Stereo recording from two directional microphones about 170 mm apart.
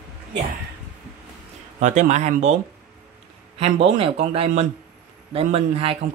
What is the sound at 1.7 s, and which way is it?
Speech, 45° right (ahead or behind).